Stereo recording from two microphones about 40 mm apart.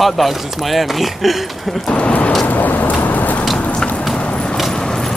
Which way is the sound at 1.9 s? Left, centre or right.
Left.